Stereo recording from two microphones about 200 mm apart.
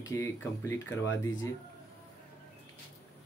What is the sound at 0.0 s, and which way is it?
Speech, 15° left (ahead or behind).